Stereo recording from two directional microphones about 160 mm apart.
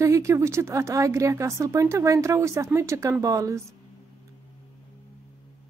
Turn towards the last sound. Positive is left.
turn(degrees=-20)  # may be behind; listen again after turning